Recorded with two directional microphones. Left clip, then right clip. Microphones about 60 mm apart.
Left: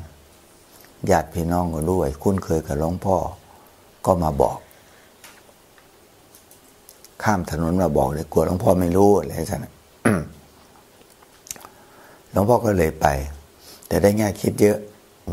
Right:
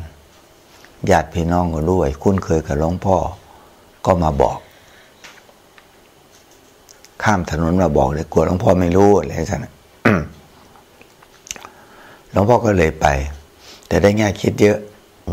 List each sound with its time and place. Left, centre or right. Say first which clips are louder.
1.3 s speech: right 4 dB; left
7.2 s speech: right 5 dB; left
11.4 s biting: right 6 dB; left
12.3 s speech: right 4 dB; left